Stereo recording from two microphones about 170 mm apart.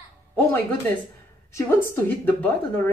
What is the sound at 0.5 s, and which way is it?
Speech, 10° left (ahead or behind).